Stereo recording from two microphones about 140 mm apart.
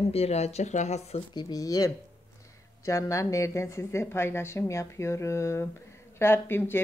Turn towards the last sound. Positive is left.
turn(degrees=15)  # may be behind; listen again after turning